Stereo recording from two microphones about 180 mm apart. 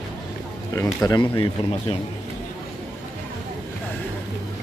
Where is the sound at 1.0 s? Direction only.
25° left (ahead or behind).